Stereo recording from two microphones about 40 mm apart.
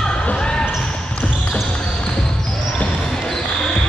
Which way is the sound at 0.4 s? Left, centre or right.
Left.